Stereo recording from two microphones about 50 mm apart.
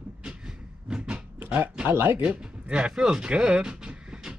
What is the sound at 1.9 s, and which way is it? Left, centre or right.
Speech, right.